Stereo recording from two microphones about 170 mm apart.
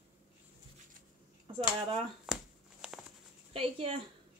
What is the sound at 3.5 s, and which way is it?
Speech, 35° right (ahead or behind).